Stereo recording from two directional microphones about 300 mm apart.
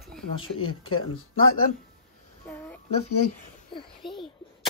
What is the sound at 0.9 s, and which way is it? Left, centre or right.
Speech, left.